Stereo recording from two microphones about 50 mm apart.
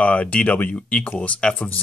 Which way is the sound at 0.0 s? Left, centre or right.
Left.